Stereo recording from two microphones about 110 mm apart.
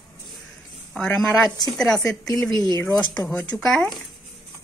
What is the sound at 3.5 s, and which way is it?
Speech, centre (ahead or behind).